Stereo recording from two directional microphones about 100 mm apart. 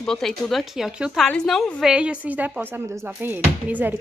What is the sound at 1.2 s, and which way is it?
A woman's voice, 5° left (ahead or behind).